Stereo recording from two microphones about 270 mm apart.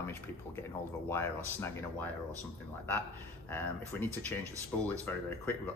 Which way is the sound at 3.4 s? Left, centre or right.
Centre.